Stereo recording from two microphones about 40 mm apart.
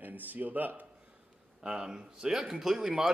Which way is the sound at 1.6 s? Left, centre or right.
Centre.